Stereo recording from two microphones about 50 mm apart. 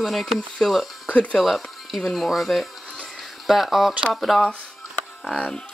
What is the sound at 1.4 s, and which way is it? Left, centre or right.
Speech, centre.